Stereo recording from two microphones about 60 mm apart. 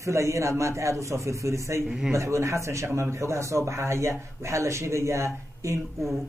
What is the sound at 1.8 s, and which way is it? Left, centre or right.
Speech, centre.